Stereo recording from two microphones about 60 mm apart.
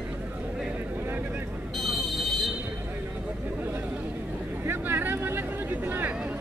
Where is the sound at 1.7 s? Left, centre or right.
Centre.